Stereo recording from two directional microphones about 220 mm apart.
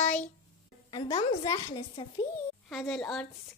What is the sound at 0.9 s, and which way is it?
A woman's voice, 20° left (ahead or behind).